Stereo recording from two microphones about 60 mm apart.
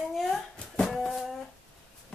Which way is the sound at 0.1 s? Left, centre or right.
Centre.